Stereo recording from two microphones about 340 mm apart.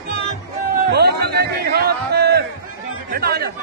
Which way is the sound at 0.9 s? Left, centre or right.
Right.